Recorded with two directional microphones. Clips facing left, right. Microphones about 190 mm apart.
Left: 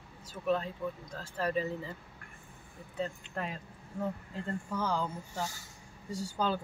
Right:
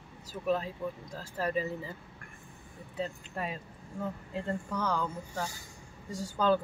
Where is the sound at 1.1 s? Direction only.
5° right (ahead or behind).